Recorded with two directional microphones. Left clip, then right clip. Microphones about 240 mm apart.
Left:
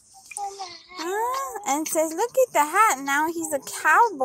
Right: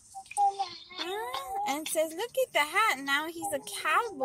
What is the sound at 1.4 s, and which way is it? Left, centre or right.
Speech, centre.